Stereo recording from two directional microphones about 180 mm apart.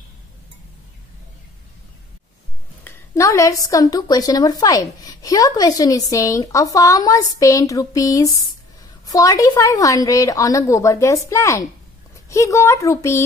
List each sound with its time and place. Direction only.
2.8 s a woman's voice: 15° left (ahead or behind)